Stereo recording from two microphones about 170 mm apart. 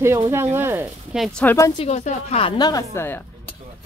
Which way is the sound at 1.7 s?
40° left (ahead or behind).